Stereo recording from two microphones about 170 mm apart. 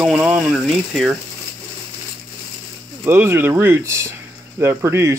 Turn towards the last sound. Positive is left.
turn(degrees=-15)  # may be behind; listen again after turning